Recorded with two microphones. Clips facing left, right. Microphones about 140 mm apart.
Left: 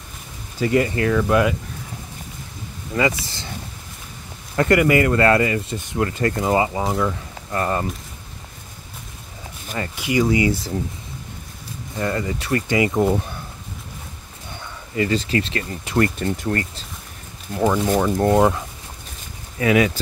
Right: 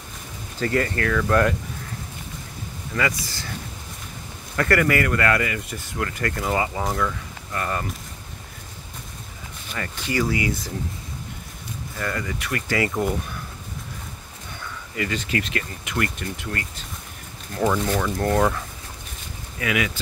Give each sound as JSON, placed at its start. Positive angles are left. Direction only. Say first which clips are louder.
{"t": 0.6, "sound": "speech", "louder": "left 4 dB", "side_deg": 15}
{"t": 1.3, "sound": "speech", "louder": "even", "side_deg": 5}
{"t": 2.9, "sound": "speech", "louder": "left 5 dB", "side_deg": 25}
{"t": 4.6, "sound": "speech", "louder": "left 4 dB", "side_deg": 20}
{"t": 9.9, "sound": "speech", "louder": "left 5 dB", "side_deg": 15}
{"t": 12.0, "sound": "speech", "louder": "left 5 dB", "side_deg": 25}
{"t": 15.0, "sound": "speech", "louder": "left 6 dB", "side_deg": 30}
{"t": 17.6, "sound": "speech", "louder": "left 3 dB", "side_deg": 10}
{"t": 17.9, "sound": "speech", "louder": "left 5 dB", "side_deg": 25}
{"t": 19.6, "sound": "speech", "louder": "left 8 dB", "side_deg": 35}